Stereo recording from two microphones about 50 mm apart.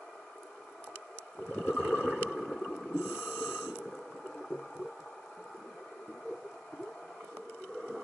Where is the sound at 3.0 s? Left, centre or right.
Left.